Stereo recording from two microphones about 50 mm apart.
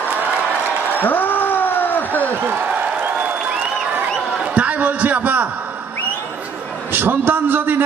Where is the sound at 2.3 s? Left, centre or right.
Right.